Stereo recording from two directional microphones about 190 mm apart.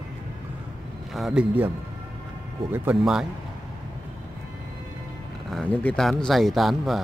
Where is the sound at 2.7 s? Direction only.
10° right (ahead or behind).